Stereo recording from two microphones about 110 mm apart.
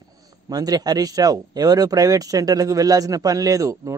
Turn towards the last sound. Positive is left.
turn(degrees=-30)  # may be behind; listen again after turning